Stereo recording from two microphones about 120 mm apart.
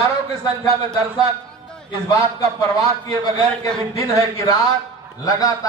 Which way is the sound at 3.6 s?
25° left (ahead or behind).